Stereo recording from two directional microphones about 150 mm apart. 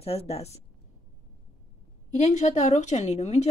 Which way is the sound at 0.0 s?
40° left (ahead or behind).